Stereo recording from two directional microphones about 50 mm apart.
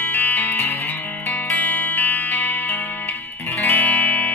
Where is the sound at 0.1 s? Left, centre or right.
Left.